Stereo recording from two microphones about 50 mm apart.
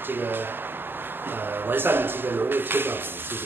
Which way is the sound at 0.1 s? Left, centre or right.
Right.